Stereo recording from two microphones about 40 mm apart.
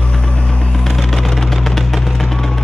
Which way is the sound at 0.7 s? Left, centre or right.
Centre.